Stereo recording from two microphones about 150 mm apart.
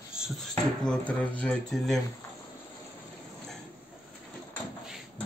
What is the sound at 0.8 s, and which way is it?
Speech, 5° left (ahead or behind).